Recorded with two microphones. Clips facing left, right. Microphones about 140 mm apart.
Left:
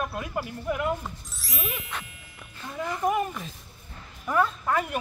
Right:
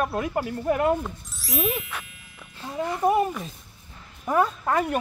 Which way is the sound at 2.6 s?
30° right (ahead or behind).